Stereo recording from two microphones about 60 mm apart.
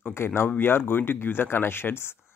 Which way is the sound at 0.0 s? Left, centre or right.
Left.